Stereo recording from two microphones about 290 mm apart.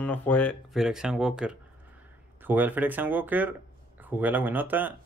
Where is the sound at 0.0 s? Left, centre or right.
Centre.